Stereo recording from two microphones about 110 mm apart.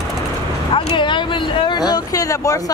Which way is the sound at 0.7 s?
45° left (ahead or behind).